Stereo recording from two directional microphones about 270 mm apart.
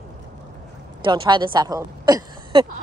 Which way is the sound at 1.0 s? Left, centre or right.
Centre.